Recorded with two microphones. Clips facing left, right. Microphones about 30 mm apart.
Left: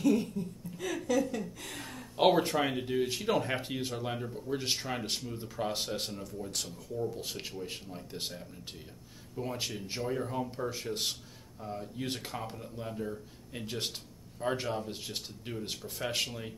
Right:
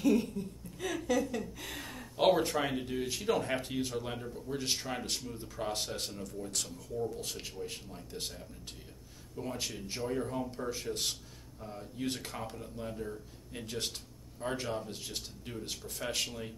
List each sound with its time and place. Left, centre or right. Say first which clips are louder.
0.0 s laughter: left 1 dB; centre
1.3 s a sound: even; centre
2.1 s speech: left 2 dB; centre